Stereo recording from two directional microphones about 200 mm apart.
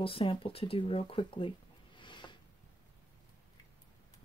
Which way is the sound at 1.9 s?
25° left (ahead or behind).